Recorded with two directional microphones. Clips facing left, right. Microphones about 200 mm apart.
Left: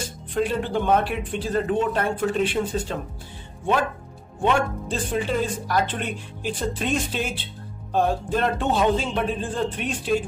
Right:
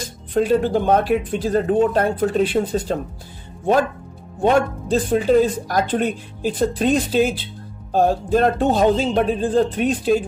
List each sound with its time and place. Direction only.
0.3 s a woman's voice: 40° right (ahead or behind)
4.4 s a woman's voice: 40° right (ahead or behind)